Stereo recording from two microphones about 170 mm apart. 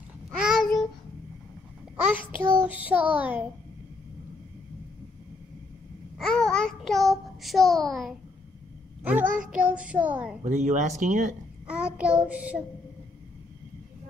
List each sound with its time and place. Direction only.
0.4 s babbling: centre (ahead or behind)
2.0 s child singing: 10° right (ahead or behind)
2.6 s a child's voice: 10° right (ahead or behind)
6.1 s child singing: centre (ahead or behind)
9.0 s a child's voice: 10° right (ahead or behind)
10.4 s speech: 40° right (ahead or behind)
11.6 s a child's voice: 5° right (ahead or behind)